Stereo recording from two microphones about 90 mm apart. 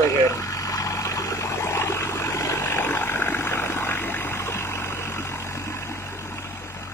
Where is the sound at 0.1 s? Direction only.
35° left (ahead or behind).